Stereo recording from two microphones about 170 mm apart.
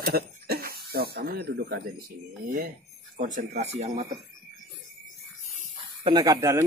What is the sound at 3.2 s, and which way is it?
Speech, 55° right (ahead or behind).